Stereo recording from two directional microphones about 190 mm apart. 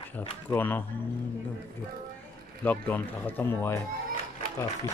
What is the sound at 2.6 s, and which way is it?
Speech, 10° left (ahead or behind).